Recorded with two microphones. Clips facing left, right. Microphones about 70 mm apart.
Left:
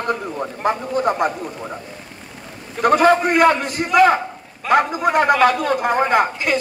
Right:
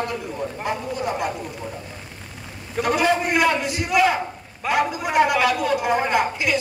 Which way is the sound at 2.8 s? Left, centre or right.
Left.